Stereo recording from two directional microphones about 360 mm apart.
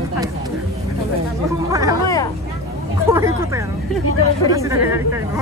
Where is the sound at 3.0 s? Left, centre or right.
Centre.